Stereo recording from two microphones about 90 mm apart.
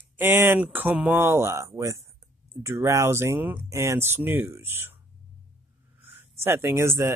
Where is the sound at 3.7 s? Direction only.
35° right (ahead or behind).